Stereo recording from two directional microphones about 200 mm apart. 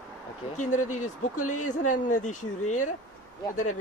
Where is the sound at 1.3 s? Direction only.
90° left.